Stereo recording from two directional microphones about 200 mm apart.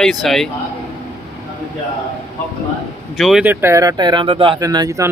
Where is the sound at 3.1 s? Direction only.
Centre (ahead or behind); by 5.1 s 15° right (ahead or behind).